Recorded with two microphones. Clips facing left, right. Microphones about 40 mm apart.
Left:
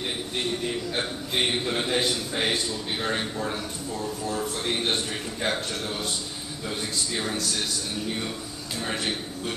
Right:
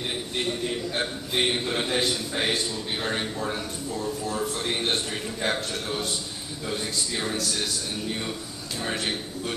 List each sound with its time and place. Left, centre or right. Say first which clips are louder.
0.9 s a man's voice: even; centre